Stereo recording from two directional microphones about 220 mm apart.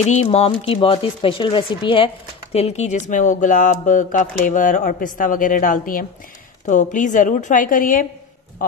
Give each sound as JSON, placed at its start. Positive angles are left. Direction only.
{"t": 0.0, "sound": "speech", "side_deg": 30}